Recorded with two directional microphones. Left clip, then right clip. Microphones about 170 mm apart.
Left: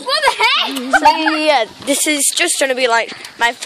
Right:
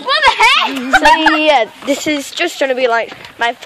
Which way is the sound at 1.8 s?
Centre (ahead or behind).